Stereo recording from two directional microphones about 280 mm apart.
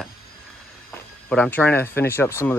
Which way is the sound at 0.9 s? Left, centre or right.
Centre.